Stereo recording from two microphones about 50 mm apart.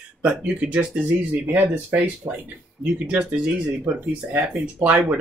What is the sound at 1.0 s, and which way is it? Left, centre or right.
Speech, right.